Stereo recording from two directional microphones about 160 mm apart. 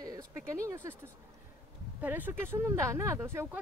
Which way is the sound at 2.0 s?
10° right (ahead or behind).